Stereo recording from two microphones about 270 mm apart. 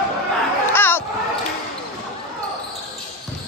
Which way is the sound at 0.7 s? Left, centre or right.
Centre.